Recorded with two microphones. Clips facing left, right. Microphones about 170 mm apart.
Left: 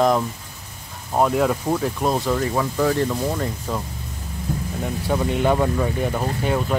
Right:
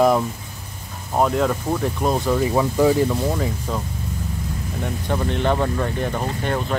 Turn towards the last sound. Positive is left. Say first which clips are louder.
# left 1 dB
turn(degrees=5)  # may be behind; listen again after turning